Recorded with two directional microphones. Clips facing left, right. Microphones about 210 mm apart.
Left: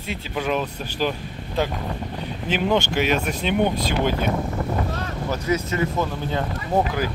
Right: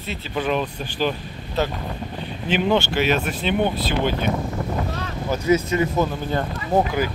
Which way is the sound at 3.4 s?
10° left (ahead or behind).